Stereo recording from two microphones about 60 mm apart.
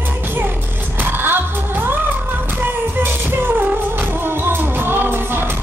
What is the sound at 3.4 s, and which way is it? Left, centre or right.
Music, right.